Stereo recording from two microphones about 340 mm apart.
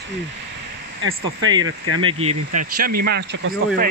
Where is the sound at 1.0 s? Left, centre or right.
Right.